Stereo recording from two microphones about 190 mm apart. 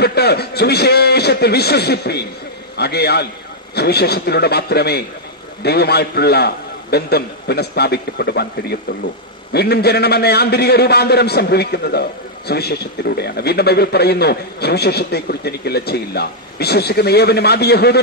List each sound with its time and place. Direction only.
0.0 s a man's voice: 55° left (ahead or behind)